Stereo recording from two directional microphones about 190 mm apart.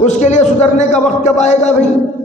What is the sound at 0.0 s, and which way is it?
Speech, 40° left (ahead or behind).